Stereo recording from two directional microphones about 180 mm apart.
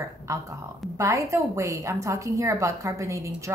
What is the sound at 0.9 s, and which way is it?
A woman's voice, 15° right (ahead or behind).